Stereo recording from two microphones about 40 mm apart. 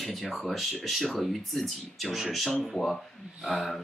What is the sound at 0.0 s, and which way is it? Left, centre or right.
Speech, centre.